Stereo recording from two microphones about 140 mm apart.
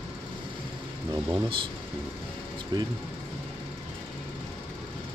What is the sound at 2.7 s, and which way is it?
Speech, 30° right (ahead or behind).